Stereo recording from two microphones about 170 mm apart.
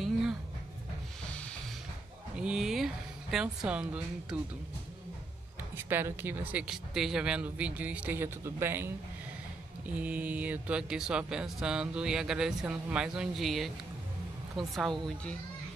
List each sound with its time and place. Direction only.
0.0 s a sound: 5° right (ahead or behind)
2.3 s a woman's voice: 5° right (ahead or behind)
5.8 s speech: 15° right (ahead or behind)